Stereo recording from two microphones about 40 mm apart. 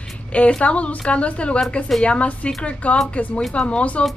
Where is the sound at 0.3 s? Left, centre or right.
Left.